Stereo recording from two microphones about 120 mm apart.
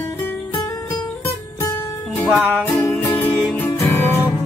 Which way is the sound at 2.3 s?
15° right (ahead or behind).